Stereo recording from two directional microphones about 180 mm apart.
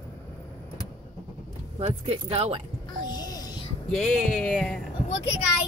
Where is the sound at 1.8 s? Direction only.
30° right (ahead or behind).